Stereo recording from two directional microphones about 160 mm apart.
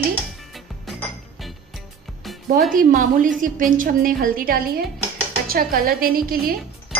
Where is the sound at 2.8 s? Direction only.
55° right (ahead or behind).